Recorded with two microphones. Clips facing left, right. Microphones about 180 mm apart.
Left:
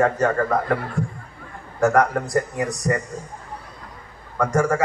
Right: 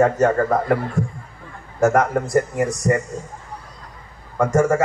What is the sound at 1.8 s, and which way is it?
A man's voice, 20° right (ahead or behind).